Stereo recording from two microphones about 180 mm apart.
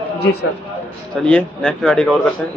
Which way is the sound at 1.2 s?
5° left (ahead or behind).